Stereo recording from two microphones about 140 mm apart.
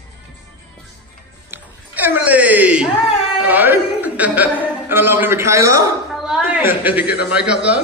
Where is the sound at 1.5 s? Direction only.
15° right (ahead or behind).